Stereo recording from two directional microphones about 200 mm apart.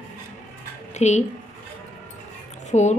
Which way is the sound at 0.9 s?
35° left (ahead or behind).